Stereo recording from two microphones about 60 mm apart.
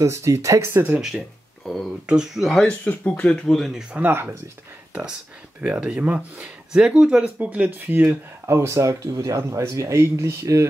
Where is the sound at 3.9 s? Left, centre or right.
Right.